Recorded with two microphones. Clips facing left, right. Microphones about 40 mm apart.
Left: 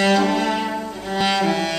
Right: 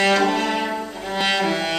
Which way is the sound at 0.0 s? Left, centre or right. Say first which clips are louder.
Even; centre.